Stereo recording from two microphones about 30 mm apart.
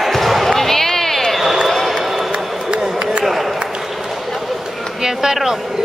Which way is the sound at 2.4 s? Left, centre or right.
Centre.